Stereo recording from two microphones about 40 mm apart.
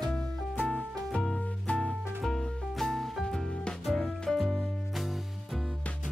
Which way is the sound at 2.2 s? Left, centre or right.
Centre.